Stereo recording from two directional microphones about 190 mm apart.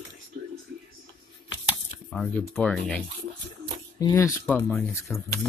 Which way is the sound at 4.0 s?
20° left (ahead or behind).